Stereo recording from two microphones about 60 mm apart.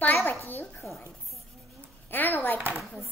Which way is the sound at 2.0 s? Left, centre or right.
Left.